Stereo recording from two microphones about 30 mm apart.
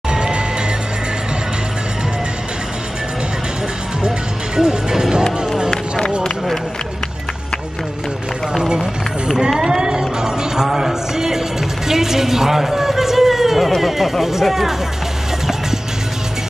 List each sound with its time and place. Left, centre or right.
0.1 s music: right
4.6 s music: right
9.7 s music: right; by 14.1 s centre
14.4 s speech: centre